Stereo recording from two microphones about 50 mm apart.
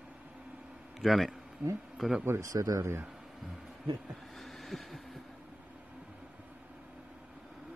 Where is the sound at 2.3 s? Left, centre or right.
Right.